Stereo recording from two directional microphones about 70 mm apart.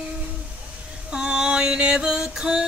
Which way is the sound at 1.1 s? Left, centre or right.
Centre.